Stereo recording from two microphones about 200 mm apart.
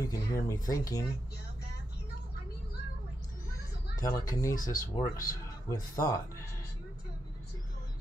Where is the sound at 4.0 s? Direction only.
15° left (ahead or behind).